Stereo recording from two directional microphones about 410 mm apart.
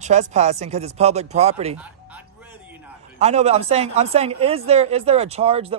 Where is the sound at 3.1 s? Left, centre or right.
Centre.